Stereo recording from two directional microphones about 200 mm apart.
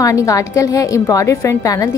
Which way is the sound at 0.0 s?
15° left (ahead or behind).